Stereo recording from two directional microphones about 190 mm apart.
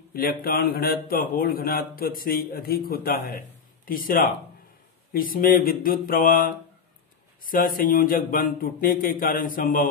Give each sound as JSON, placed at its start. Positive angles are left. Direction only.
{"t": 0.2, "sound": "speech", "side_deg": 55}